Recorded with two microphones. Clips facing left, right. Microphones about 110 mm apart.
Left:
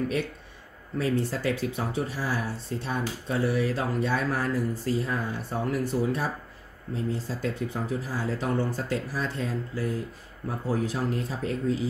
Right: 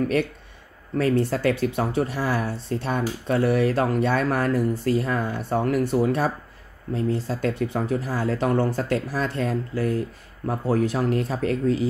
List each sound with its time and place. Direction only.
0.9 s speech: 65° right (ahead or behind)